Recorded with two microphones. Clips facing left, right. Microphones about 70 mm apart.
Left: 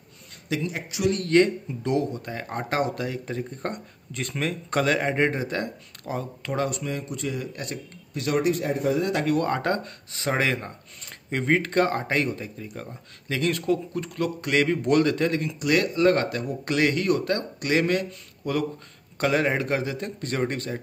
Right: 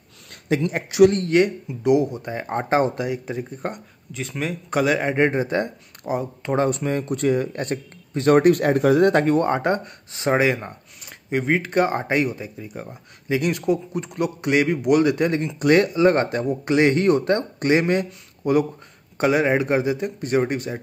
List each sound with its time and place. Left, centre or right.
0.5 s speech: right
0.8 s speech: right
1.3 s speech: centre
6.5 s speech: right
9.1 s speech: right
9.4 s speech: right
15.9 s speech: right